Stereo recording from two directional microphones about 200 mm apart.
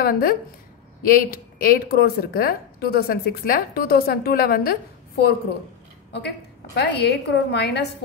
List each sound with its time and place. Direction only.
0.0 s a woman's voice: 50° left (ahead or behind)